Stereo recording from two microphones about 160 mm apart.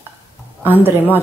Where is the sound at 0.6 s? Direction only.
10° right (ahead or behind).